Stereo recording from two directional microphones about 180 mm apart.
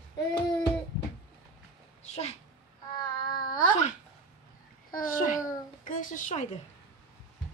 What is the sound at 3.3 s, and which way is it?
Speech, 20° left (ahead or behind).